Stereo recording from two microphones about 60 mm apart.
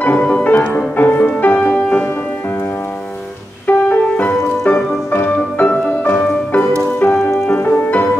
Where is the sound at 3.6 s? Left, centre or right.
Left.